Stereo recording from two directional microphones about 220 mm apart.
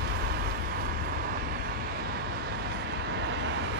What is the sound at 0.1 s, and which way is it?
Vehicle, 45° right (ahead or behind).